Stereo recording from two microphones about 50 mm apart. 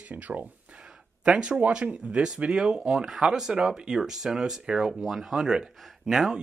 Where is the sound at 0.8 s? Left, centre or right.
Centre.